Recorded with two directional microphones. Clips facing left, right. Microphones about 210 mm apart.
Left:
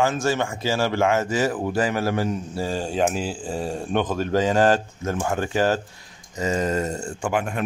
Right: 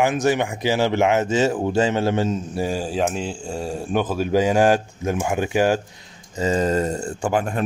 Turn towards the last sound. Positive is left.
turn(degrees=-40)  # may be behind; listen again after turning